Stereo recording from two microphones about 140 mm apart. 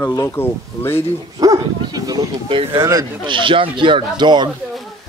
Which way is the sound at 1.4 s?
25° right (ahead or behind).